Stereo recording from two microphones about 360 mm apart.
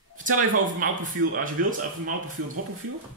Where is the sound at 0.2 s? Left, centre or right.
Right.